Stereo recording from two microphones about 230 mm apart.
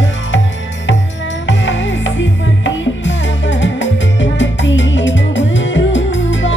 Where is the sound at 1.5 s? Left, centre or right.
Left.